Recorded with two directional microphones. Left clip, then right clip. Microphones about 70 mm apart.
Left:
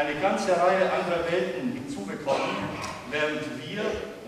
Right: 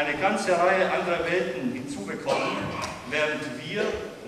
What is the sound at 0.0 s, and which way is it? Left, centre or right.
A man's voice, centre.